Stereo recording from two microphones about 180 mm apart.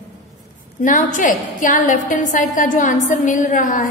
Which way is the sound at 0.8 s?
45° left (ahead or behind).